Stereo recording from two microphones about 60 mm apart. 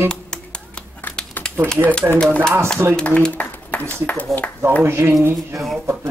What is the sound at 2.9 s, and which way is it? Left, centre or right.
Speech, centre.